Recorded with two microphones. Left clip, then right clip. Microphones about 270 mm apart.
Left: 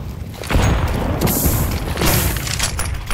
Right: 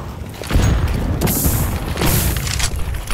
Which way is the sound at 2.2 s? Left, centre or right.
Centre.